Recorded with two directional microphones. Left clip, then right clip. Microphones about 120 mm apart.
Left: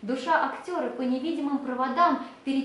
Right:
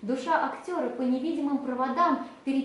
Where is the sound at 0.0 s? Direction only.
5° right (ahead or behind).